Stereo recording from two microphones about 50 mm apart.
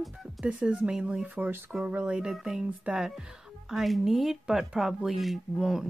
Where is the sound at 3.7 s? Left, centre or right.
Centre.